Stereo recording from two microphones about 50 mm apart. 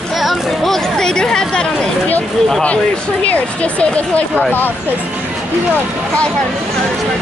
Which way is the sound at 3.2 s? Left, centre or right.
Left.